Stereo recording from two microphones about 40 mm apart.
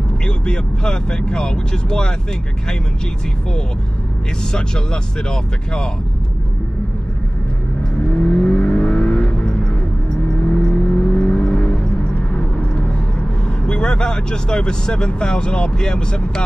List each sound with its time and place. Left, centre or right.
0.5 s speech: left
4.5 s speech: left
8.2 s vehicle: left
11.3 s vehicle: centre
13.7 s speech: left